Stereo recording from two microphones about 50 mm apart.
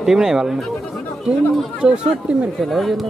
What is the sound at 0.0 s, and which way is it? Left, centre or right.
Speech, centre.